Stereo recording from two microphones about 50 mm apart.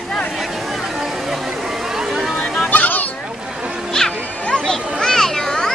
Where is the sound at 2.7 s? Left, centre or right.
Left.